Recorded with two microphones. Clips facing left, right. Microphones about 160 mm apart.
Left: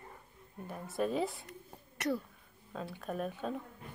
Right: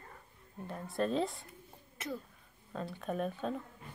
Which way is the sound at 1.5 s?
75° left (ahead or behind).